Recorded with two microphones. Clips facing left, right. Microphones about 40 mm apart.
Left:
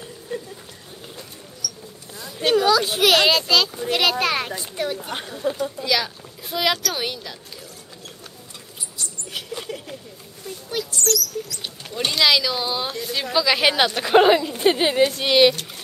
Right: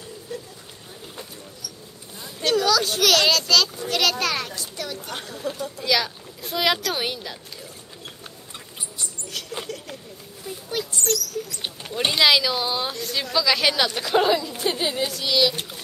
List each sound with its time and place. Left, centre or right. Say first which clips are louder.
0.3 s a sound: left 4 dB; left
1.6 s mouse: left 10 dB; right
2.3 s a child's voice: left 3 dB; left
5.8 s speech: even; centre
9.7 s a sound: left 2 dB; centre
10.4 s speech: left 1 dB; centre
11.1 s speech: left 2 dB; right
11.8 s speech: even; centre
12.9 s a child's voice: left 2 dB; centre; by 15.5 s left